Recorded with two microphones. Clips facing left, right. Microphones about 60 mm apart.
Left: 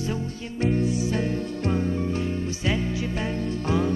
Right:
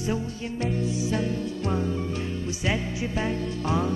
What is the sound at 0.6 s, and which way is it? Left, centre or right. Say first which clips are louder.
Music: left 4 dB; left.